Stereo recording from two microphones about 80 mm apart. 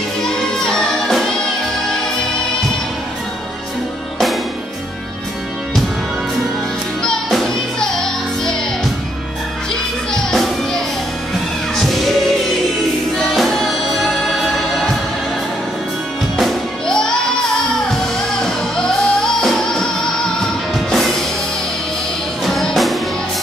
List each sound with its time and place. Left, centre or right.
0.2 s music: centre
7.0 s music: centre
10.1 s music: centre
13.2 s music: centre
16.3 s music: centre
22.4 s music: centre